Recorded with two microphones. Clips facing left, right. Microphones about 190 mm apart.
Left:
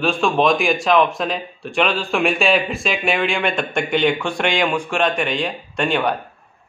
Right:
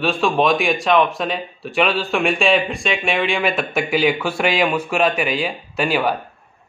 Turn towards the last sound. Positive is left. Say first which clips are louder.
# even
turn(degrees=-5)  # may be behind; listen again after turning